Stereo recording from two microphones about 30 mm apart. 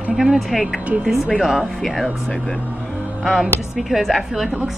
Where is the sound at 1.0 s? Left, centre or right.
Centre.